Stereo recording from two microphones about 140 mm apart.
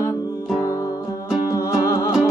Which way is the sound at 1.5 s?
20° left (ahead or behind).